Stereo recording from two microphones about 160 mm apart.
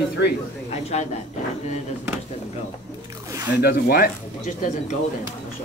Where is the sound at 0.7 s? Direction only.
45° left (ahead or behind).